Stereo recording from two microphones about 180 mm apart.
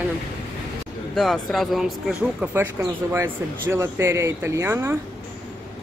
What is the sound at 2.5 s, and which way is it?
Speech, 10° right (ahead or behind).